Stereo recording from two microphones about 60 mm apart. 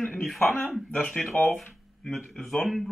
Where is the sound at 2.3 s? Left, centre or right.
Centre.